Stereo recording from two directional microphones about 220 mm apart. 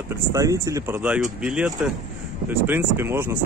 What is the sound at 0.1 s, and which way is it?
Speech, 15° right (ahead or behind).